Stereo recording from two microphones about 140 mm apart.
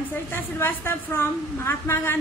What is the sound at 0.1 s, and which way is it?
A woman's voice, 15° left (ahead or behind).